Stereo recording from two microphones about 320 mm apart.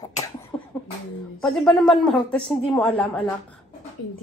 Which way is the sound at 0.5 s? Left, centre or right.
Centre.